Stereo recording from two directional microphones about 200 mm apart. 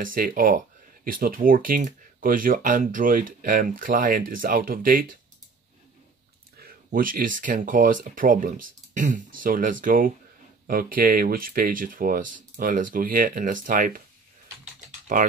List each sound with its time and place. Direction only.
0.0 s speech: 45° right (ahead or behind)
6.6 s speech: 45° right (ahead or behind)
15.1 s speech: 40° right (ahead or behind)